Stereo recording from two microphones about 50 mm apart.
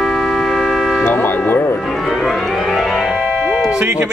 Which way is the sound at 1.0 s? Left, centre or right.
Left.